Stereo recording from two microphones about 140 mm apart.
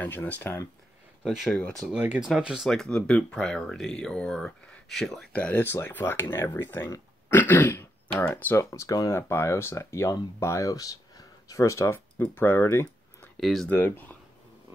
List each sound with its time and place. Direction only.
0.0 s speech: 15° left (ahead or behind)
1.2 s speech: 5° left (ahead or behind)
1.9 s speech: 10° right (ahead or behind); by 13.3 s 15° left (ahead or behind)
13.4 s speech: centre (ahead or behind)
13.7 s speech: 15° left (ahead or behind)